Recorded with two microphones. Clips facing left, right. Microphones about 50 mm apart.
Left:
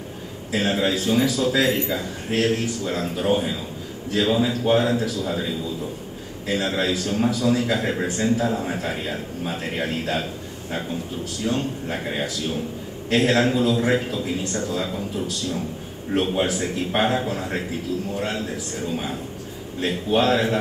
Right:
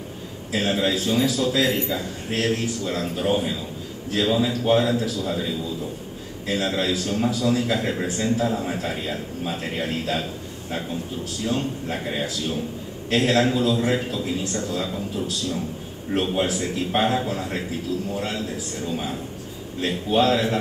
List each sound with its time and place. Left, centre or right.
0.5 s a man's voice: left
8.5 s a man's voice: left
11.4 s a man's voice: left